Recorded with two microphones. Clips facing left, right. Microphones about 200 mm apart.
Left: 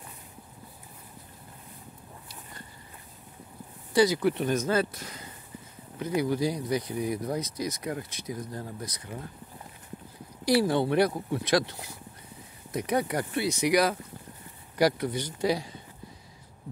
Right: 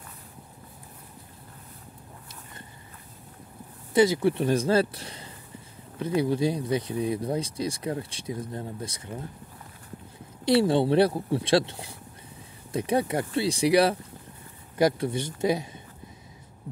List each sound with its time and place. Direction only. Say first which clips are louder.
3.9 s speech: right 2 dB; 25° right (ahead or behind)
10.4 s speech: right 3 dB; 25° right (ahead or behind)